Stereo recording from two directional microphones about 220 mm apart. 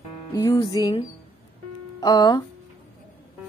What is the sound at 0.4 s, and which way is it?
A woman's voice, 15° left (ahead or behind).